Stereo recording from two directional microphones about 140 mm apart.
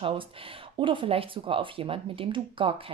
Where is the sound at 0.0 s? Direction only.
40° right (ahead or behind).